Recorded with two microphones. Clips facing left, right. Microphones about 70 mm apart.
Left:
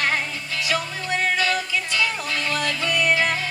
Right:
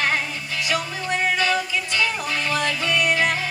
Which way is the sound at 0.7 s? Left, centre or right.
Centre.